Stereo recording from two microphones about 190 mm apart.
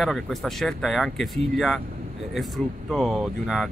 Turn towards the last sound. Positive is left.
turn(degrees=0)  # may be behind; listen again after turning